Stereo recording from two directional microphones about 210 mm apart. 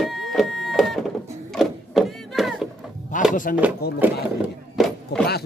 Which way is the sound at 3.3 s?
40° left (ahead or behind).